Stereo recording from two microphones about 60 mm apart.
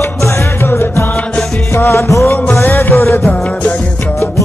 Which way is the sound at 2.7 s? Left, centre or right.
Left.